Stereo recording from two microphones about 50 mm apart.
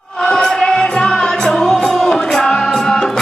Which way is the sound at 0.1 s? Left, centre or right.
Centre.